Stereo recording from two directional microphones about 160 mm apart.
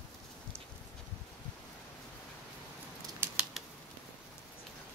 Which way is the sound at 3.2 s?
5° right (ahead or behind).